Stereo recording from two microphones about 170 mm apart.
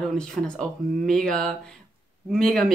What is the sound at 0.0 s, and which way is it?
Speech, 5° left (ahead or behind).